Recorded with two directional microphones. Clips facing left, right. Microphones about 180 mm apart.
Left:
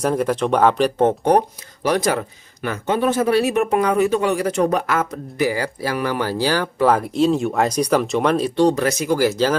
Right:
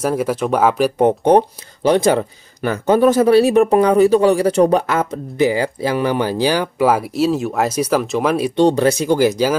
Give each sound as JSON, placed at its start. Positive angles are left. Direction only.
{"t": 0.0, "sound": "speech", "side_deg": -5}
{"t": 8.5, "sound": "speech", "side_deg": -30}